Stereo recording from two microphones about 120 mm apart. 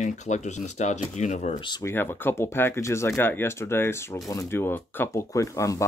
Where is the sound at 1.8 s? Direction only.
20° left (ahead or behind).